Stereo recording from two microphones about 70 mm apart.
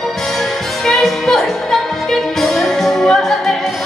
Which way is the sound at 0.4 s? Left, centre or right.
Centre.